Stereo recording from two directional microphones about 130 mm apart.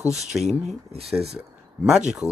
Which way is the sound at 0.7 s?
55° right (ahead or behind).